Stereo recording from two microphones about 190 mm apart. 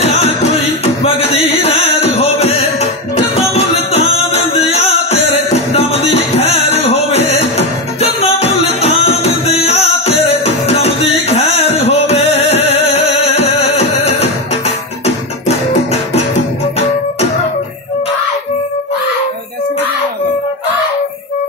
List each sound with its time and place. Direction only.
1.0 s music: 30° left (ahead or behind)